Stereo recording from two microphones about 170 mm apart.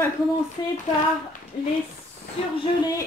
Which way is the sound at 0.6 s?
25° left (ahead or behind).